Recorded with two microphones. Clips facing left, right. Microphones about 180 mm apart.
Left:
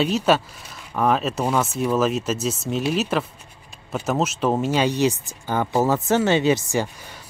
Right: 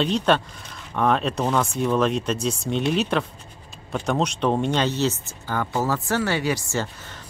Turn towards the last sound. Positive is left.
turn(degrees=10)  # may be behind; listen again after turning